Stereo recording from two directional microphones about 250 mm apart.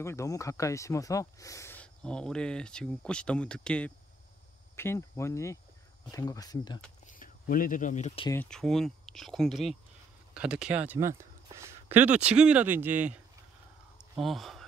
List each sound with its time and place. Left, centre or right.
0.0 s speech: centre
7.2 s speech: left
8.3 s speech: centre
13.9 s a sound: centre